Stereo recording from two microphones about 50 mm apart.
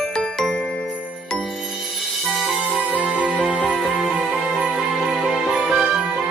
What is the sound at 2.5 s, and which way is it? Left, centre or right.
Music, right.